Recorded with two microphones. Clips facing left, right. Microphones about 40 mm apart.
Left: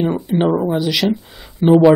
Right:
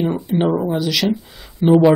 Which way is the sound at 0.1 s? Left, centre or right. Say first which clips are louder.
Left 2 dB; centre.